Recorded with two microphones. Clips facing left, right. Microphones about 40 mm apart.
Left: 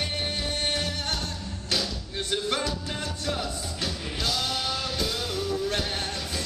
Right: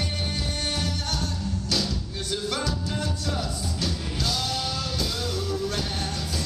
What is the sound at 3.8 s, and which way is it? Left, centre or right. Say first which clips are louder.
Music: even; centre.